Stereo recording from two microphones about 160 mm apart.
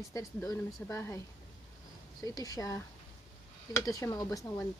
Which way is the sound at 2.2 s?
20° left (ahead or behind).